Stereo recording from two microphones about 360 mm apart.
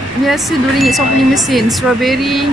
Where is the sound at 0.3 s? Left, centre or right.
Centre.